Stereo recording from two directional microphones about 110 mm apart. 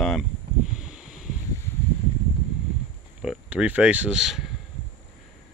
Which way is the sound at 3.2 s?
5° right (ahead or behind).